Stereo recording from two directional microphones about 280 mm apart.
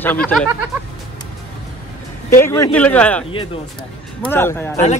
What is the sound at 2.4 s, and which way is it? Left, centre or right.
Speech, centre.